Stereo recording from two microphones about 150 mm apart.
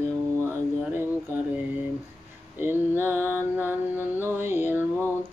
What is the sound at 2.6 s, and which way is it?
Mantra, 15° right (ahead or behind).